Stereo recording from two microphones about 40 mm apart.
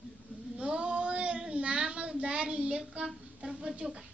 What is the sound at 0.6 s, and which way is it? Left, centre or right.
Child singing, right.